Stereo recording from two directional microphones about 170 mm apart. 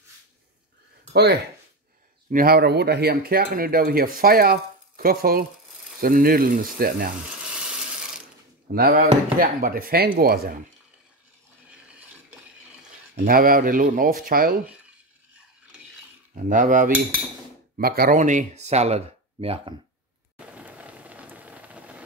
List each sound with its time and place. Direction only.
1.1 s speech: 70° right (ahead or behind)
7.2 s a sound: 5° right (ahead or behind)
8.7 s speech: 55° right (ahead or behind)
13.1 s speech: 60° right (ahead or behind)
16.3 s cutlery: 50° right (ahead or behind)
17.7 s speech: 60° right (ahead or behind); by 19.7 s 35° right (ahead or behind)
20.3 s rain on surface: 10° right (ahead or behind)